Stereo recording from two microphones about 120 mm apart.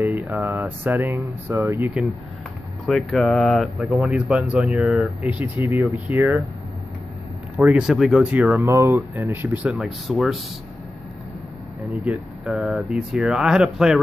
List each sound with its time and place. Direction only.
0.0 s speech: 20° right (ahead or behind)
2.9 s speech: centre (ahead or behind)
5.2 s speech: 15° right (ahead or behind)
7.5 s speech: 10° right (ahead or behind)
8.6 s speech: 25° right (ahead or behind)
9.7 s speech: centre (ahead or behind)
11.9 s speech: 10° right (ahead or behind)